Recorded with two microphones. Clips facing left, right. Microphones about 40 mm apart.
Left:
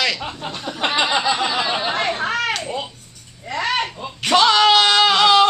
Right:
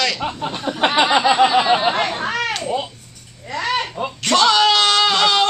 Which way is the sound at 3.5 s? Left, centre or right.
Centre.